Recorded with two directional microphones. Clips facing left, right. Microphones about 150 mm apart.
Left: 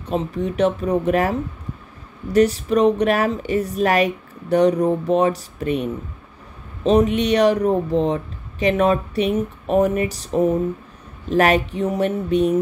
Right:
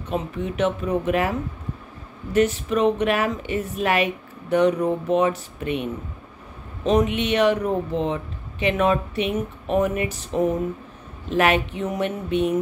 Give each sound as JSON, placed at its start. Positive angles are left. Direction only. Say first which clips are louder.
{"t": 0.1, "sound": "a woman's voice", "louder": "left 4 dB", "side_deg": 35}
{"t": 2.3, "sound": "a woman's voice", "louder": "left 4 dB", "side_deg": 35}
{"t": 11.2, "sound": "a woman's voice", "louder": "left 3 dB", "side_deg": 40}